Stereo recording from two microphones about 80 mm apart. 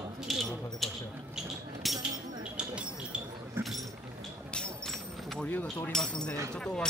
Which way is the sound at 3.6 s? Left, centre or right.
Right.